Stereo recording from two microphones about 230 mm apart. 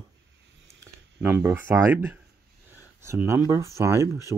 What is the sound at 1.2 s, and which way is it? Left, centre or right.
Speech, centre.